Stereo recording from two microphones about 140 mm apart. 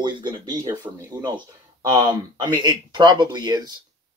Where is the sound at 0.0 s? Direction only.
35° right (ahead or behind).